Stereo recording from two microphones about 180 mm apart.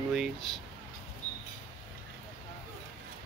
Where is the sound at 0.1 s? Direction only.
Centre (ahead or behind).